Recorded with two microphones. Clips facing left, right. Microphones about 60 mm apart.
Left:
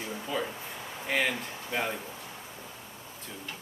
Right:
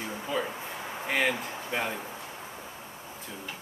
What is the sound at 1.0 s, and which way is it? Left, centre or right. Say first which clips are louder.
Speech: right 1 dB; centre.